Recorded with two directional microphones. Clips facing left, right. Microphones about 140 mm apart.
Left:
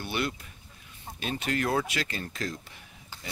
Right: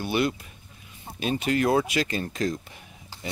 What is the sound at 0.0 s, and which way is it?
Speech, 15° right (ahead or behind).